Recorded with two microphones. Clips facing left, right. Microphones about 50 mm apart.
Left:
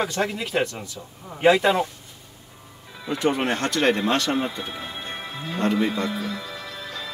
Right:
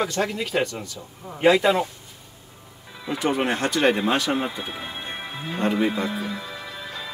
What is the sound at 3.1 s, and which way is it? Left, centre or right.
Speech, centre.